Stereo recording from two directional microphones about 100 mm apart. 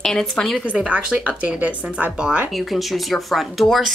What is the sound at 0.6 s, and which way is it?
Speech, 10° right (ahead or behind).